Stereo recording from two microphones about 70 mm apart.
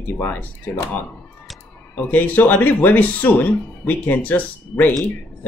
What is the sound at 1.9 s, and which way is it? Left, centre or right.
Speech, left.